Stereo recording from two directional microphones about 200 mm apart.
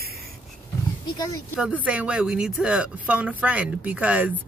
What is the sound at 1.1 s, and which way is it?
Speech, 15° left (ahead or behind).